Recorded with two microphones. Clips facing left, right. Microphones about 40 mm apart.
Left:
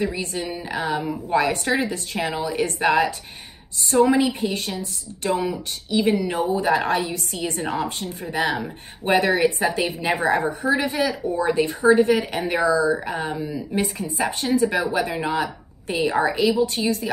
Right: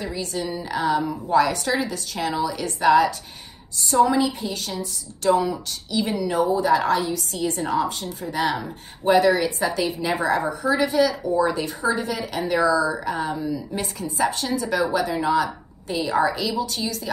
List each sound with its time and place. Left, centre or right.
0.1 s a woman's voice: left